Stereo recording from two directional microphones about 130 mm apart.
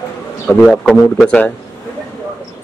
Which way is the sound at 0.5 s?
5° left (ahead or behind).